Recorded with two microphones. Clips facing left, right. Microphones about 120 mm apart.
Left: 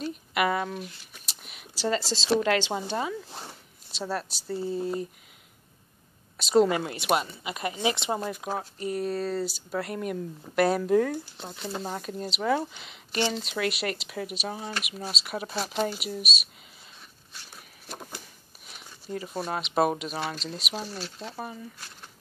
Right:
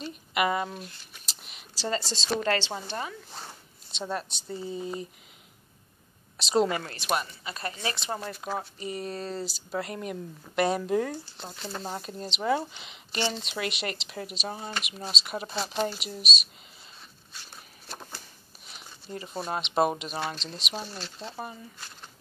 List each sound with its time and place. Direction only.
0.0 s a sound: centre (ahead or behind)
1.9 s speech: 5° left (ahead or behind)
6.3 s a woman's voice: centre (ahead or behind)
6.8 s speech: 20° left (ahead or behind)
8.5 s speech: centre (ahead or behind)
11.3 s speech: 10° left (ahead or behind)
11.9 s speech: 5° right (ahead or behind)
17.8 s speech: 10° left (ahead or behind)